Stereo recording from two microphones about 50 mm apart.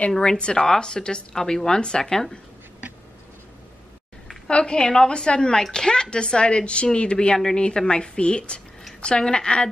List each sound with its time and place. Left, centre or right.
0.2 s a woman's voice: centre
4.5 s a woman's voice: centre